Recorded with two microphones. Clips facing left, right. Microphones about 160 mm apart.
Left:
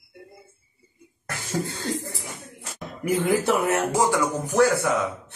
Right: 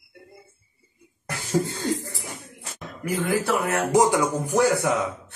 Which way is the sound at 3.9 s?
20° right (ahead or behind).